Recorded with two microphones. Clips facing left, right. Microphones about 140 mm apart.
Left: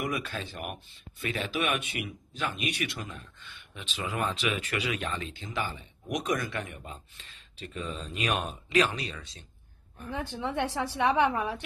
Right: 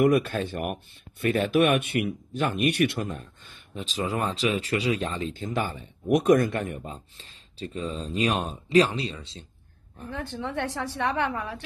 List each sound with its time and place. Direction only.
0.0 s speech: 55° right (ahead or behind); by 5.4 s 35° right (ahead or behind)
5.4 s speech: 45° right (ahead or behind)
6.8 s speech: 35° right (ahead or behind)
10.1 s a woman's voice: 15° left (ahead or behind)